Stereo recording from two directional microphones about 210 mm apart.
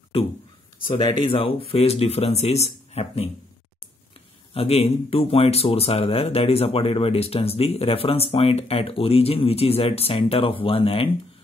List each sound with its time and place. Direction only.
0.8 s speech: 25° left (ahead or behind)
4.6 s speech: 30° left (ahead or behind)